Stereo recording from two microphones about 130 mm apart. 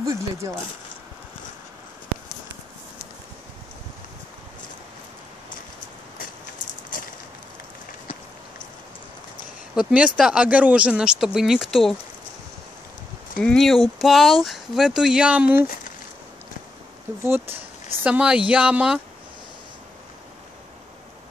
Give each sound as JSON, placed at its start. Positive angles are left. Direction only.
{"t": 0.0, "sound": "speech", "side_deg": -25}
{"t": 6.9, "sound": "a sound", "side_deg": 90}
{"t": 9.8, "sound": "speech", "side_deg": -10}
{"t": 13.4, "sound": "speech", "side_deg": 5}
{"t": 18.0, "sound": "speech", "side_deg": -10}